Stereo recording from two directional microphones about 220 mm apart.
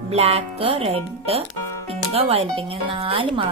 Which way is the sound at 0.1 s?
30° right (ahead or behind).